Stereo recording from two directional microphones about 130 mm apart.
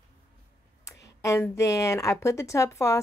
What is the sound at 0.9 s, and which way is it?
Speech, 20° left (ahead or behind).